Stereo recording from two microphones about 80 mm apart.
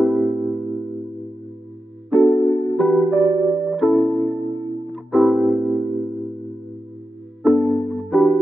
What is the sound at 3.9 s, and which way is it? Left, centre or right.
Music, left.